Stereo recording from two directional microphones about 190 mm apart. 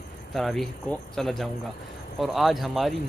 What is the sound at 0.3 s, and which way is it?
Speech, centre (ahead or behind).